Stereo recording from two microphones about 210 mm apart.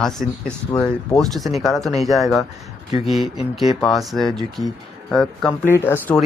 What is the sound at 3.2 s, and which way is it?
Speech, 25° left (ahead or behind).